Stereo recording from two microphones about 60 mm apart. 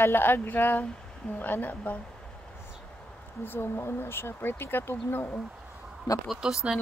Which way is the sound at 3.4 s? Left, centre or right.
Left.